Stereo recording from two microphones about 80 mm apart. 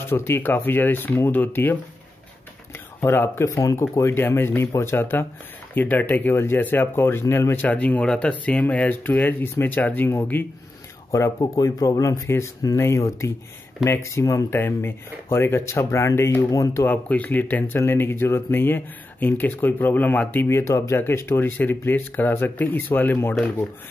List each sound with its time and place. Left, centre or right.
0.1 s speech: left
3.0 s speech: left
7.6 s speech: centre
11.1 s speech: left
16.8 s speech: left
20.4 s speech: left